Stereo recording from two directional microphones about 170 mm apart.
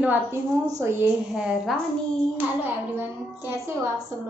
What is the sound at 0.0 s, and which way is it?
Speech, 10° right (ahead or behind).